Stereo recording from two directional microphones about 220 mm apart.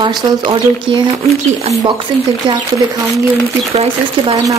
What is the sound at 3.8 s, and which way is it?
Speech, 25° right (ahead or behind).